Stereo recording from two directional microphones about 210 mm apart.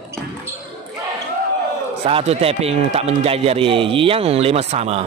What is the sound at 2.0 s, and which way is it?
Speech, 30° right (ahead or behind).